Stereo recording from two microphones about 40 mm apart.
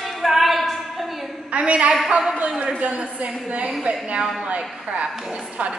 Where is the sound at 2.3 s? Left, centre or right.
Right.